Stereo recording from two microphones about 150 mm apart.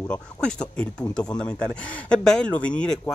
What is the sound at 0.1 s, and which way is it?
Speech, 5° left (ahead or behind).